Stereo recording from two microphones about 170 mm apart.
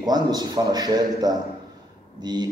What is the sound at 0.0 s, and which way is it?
A man's voice, 25° right (ahead or behind).